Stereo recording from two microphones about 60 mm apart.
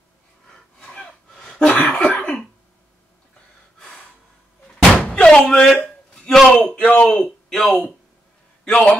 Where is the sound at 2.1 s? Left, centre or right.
Left.